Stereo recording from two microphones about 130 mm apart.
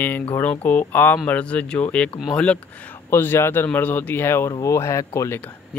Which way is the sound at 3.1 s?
15° left (ahead or behind).